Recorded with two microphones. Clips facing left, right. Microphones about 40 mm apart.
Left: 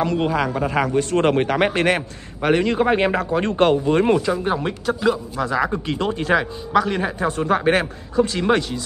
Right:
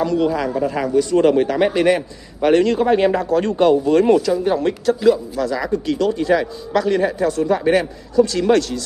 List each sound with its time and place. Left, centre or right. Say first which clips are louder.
0.0 s a man's voice: right 2 dB; left
2.4 s a man's voice: right 4 dB; centre
2.7 s a man's voice: right 3 dB; left
5.4 s speech: right 1 dB; left
6.4 s a man's voice: even; centre
7.2 s a man's voice: left 2 dB; left
7.8 s speech: right 4 dB; left